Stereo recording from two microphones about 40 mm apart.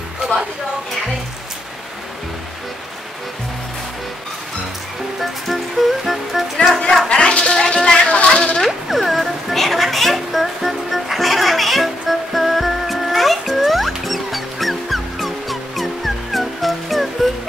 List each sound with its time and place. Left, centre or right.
5.2 s music: centre
7.1 s music: left
8.6 s a sound: centre
13.7 s music: centre